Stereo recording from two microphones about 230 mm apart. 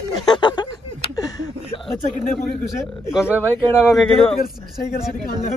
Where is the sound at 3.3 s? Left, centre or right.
Centre.